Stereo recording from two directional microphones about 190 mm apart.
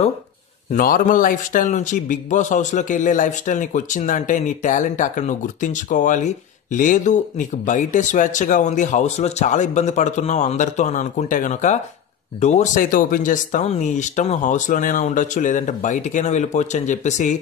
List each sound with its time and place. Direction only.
0.7 s a man's voice: 45° left (ahead or behind)